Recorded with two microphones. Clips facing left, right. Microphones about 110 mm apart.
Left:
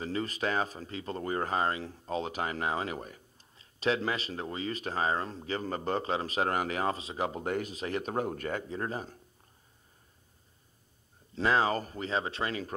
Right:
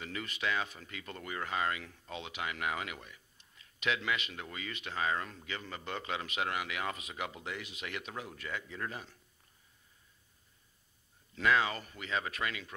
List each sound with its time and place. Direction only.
0.0 s speech: 35° left (ahead or behind)
11.3 s speech: 35° left (ahead or behind)